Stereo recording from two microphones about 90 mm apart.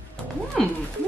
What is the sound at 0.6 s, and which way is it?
Speech, 5° left (ahead or behind).